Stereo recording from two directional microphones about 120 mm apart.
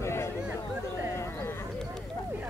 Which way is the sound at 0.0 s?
20° left (ahead or behind).